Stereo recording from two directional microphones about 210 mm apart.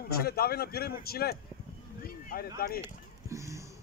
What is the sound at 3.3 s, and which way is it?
Music, 15° right (ahead or behind).